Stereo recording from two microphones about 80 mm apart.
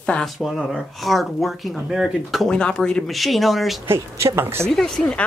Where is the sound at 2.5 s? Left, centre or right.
Centre.